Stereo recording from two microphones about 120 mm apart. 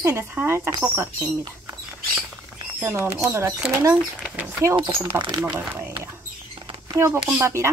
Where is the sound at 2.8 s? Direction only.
20° right (ahead or behind).